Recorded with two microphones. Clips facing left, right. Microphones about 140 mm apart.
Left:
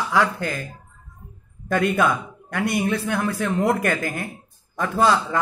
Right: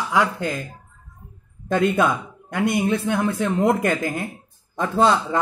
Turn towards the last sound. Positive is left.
turn(degrees=-25)  # may be behind; listen again after turning